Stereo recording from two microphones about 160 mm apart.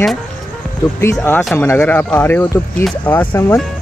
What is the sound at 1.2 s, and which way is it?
Speech, 5° left (ahead or behind).